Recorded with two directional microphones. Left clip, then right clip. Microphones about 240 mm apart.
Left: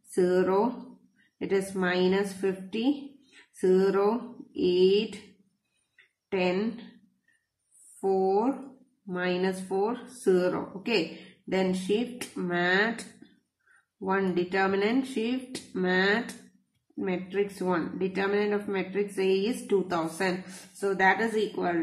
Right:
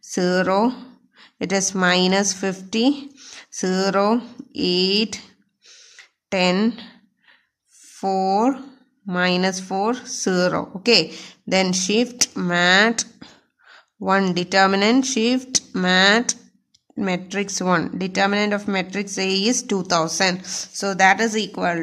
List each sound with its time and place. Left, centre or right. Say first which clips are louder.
0.1 s speech: right 5 dB; right
6.3 s speech: right 8 dB; right
8.0 s speech: right 6 dB; right
14.0 s speech: right 8 dB; right